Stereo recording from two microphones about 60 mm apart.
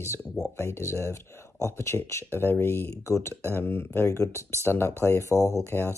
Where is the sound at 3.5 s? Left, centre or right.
Left.